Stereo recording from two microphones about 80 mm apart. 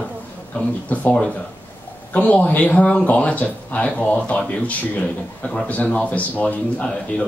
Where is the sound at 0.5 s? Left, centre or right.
Centre.